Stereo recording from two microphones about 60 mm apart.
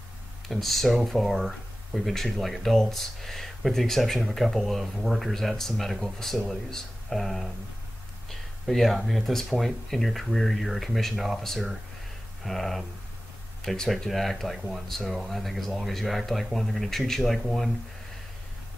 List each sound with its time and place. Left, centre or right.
0.5 s speech: centre